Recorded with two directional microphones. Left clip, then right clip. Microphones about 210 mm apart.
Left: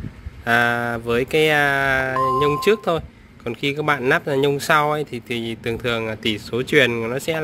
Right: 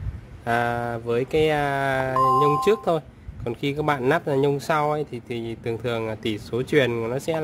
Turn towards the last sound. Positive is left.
turn(degrees=-5)  # may be behind; listen again after turning